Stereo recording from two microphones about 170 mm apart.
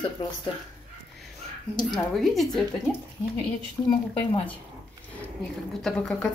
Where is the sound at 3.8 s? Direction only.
25° left (ahead or behind).